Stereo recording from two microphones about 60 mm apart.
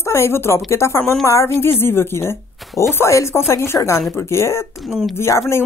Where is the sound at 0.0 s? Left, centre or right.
Left.